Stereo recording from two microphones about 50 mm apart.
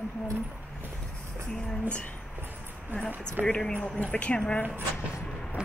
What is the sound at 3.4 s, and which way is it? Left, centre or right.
Speech, right.